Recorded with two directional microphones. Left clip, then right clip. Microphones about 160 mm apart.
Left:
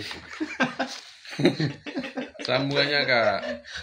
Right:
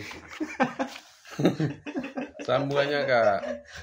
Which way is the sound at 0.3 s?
45° right (ahead or behind).